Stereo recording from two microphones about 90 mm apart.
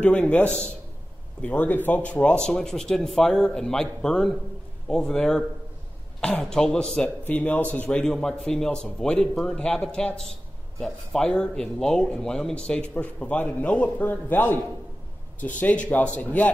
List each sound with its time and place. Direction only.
0.0 s a man's voice: 15° left (ahead or behind)
7.2 s a man's voice: 15° left (ahead or behind)
8.0 s a man's voice: 5° left (ahead or behind)